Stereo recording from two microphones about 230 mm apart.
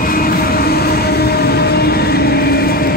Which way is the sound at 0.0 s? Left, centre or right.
Left.